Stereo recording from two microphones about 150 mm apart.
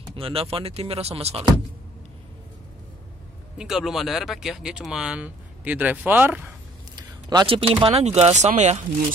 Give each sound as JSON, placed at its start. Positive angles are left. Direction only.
{"t": 0.1, "sound": "speech", "side_deg": -40}
{"t": 3.5, "sound": "speech", "side_deg": -5}
{"t": 7.0, "sound": "speech", "side_deg": -30}